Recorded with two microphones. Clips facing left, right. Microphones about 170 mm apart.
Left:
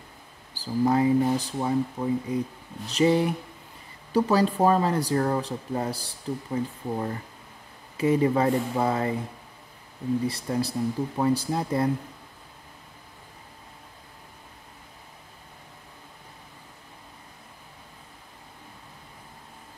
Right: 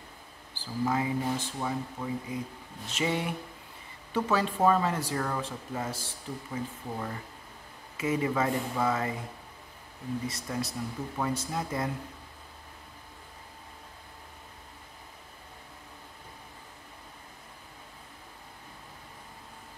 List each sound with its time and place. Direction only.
0.6 s speech: 35° left (ahead or behind)
10.2 s speech: 35° left (ahead or behind)